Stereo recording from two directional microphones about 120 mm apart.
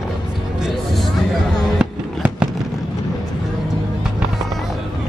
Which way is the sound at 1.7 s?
10° right (ahead or behind).